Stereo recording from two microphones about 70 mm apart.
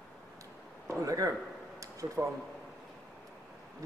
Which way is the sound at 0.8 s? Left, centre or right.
Right.